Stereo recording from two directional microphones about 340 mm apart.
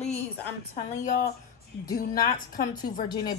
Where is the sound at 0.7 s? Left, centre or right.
Left.